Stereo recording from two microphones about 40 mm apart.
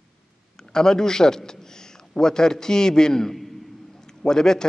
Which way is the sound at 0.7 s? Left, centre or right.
Centre.